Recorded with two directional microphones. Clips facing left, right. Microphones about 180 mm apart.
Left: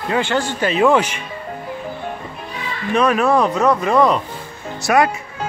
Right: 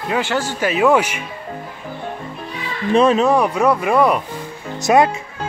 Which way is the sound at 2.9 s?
25° right (ahead or behind).